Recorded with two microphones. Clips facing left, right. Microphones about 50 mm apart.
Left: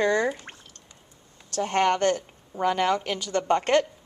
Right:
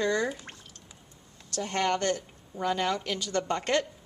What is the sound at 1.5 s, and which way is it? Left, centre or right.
A woman's voice, left.